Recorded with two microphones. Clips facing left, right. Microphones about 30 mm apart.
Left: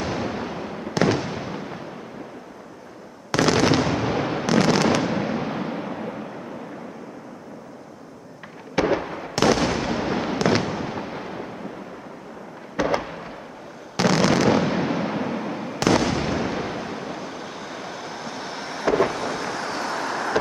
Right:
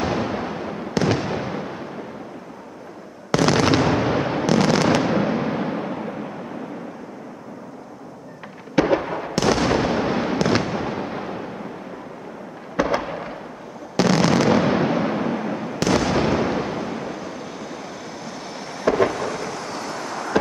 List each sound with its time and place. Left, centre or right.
0.0 s fireworks: centre
3.4 s fireworks: centre
8.7 s fireworks: centre
9.0 s fireworks: centre
12.7 s fireworks: centre
13.0 s fireworks: centre
13.9 s fireworks: centre
14.6 s fireworks: centre
16.1 s artillery fire: centre
16.9 s vehicle: centre
18.9 s thunder: centre
19.1 s vehicle: centre